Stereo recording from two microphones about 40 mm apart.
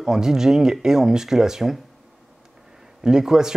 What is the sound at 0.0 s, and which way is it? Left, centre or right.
Speech, centre.